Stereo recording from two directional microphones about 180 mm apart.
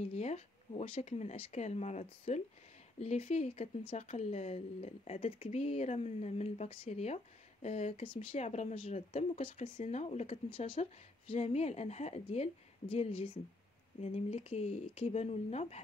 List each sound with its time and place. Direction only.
0.1 s a woman's voice: 35° left (ahead or behind)